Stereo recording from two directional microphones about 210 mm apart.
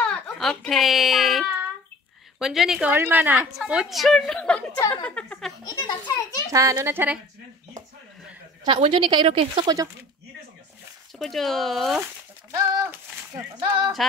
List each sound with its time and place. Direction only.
0.1 s baby cry: centre (ahead or behind)
2.3 s a woman's voice: centre (ahead or behind)
5.7 s a child's voice: 20° left (ahead or behind)
6.5 s a child's voice: 15° right (ahead or behind)
8.6 s a woman's voice: 25° right (ahead or behind)
11.1 s speech: centre (ahead or behind)
13.6 s a woman's voice: 20° right (ahead or behind)